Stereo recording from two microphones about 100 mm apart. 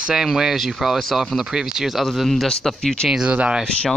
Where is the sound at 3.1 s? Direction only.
10° right (ahead or behind).